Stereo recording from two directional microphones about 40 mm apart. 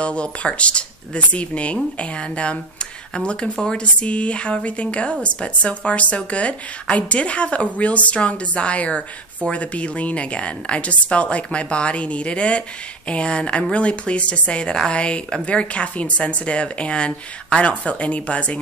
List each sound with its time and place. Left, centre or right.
0.0 s a woman's voice: left
3.5 s a woman's voice: centre
3.8 s a woman's voice: left